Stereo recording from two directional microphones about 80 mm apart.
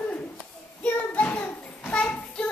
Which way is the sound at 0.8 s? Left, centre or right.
Centre.